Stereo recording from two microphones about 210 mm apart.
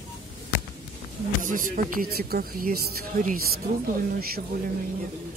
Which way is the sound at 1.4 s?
40° right (ahead or behind).